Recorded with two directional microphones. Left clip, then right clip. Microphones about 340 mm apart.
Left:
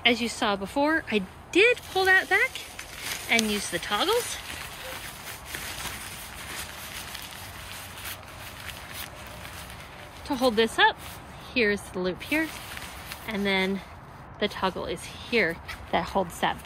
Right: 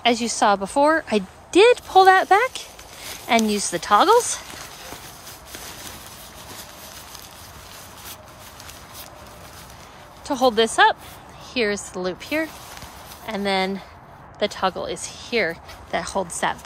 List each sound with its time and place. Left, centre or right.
0.0 s speech: centre
3.8 s speech: centre
10.2 s speech: centre